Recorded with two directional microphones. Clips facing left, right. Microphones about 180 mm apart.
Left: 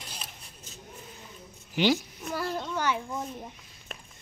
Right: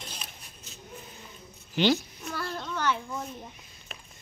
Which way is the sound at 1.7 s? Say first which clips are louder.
Even; 10° left (ahead or behind).